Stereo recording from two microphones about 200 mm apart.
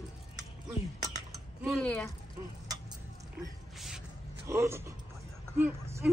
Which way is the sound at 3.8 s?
Centre (ahead or behind).